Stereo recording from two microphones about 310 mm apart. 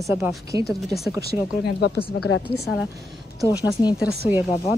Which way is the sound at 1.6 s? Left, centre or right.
Left.